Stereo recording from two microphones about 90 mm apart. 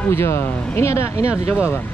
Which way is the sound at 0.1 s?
30° left (ahead or behind).